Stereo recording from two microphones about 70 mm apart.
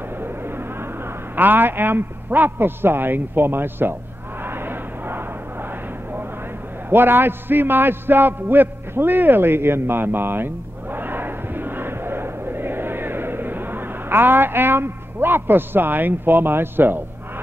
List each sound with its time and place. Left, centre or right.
1.3 s a man's voice: right
4.5 s vehicle: right
6.9 s a man's voice: right